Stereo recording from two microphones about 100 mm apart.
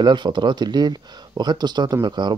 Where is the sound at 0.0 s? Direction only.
50° right (ahead or behind).